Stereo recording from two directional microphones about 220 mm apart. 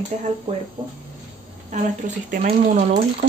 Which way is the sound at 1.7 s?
35° right (ahead or behind).